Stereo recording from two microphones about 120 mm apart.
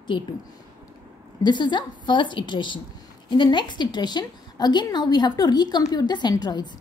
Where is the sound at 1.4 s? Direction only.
40° left (ahead or behind).